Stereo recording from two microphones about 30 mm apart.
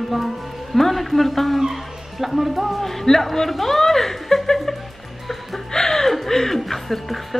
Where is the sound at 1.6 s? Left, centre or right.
Centre.